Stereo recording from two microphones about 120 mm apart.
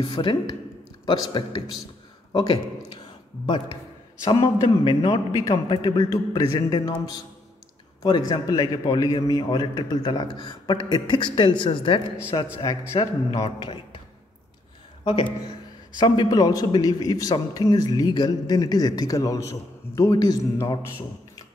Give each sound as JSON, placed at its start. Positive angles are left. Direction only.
{"t": 0.0, "sound": "a man's voice", "side_deg": 45}
{"t": 4.2, "sound": "a man's voice", "side_deg": 35}
{"t": 15.0, "sound": "speech", "side_deg": 45}
{"t": 16.0, "sound": "a man's voice", "side_deg": 35}